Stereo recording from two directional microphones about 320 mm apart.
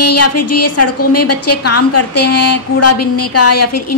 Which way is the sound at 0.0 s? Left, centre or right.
Left.